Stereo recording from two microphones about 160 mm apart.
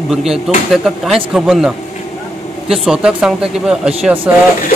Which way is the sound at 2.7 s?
5° right (ahead or behind).